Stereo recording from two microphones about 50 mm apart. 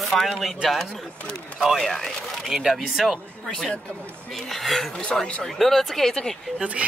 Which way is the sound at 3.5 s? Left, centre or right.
Centre.